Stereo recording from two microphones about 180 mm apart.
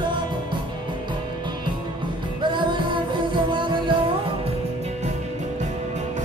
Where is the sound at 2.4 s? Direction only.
25° right (ahead or behind).